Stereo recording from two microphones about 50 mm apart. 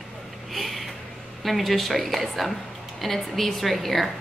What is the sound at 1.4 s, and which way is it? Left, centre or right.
A woman's voice, centre.